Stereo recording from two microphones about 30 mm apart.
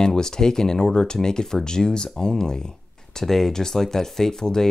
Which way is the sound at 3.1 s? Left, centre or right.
Centre.